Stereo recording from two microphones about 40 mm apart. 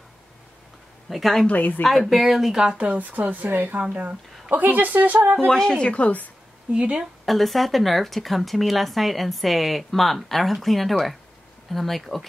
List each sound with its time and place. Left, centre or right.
1.1 s speech: centre
1.5 s a woman's voice: left
1.8 s speech: centre
3.0 s speech: right
3.9 s speech: right
5.5 s a woman's voice: centre
5.8 s speech: left
6.7 s speech: right
7.2 s speech: centre